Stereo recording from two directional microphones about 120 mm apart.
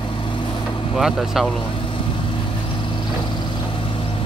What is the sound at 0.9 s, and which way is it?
Speech, centre (ahead or behind).